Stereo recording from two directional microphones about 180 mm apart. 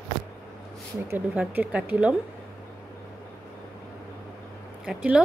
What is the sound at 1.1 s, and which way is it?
Speech, 10° right (ahead or behind).